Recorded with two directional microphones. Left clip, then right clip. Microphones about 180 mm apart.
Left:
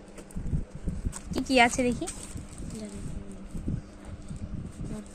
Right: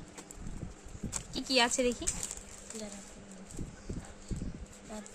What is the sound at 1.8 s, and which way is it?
Speech, centre (ahead or behind).